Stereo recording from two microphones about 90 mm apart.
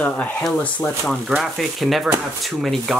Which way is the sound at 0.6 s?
15° left (ahead or behind).